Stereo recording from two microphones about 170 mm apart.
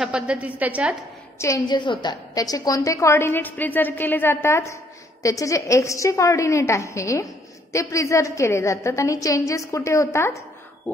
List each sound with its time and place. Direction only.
0.0 s a woman's voice: 5° right (ahead or behind)
1.4 s a woman's voice: 20° left (ahead or behind)